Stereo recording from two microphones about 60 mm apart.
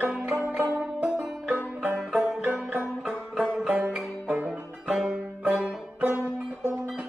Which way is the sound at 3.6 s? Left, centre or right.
Right.